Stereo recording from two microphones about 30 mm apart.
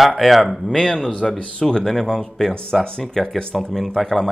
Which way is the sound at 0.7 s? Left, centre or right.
Centre.